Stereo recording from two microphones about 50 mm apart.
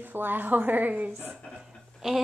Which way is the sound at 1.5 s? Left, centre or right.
Centre.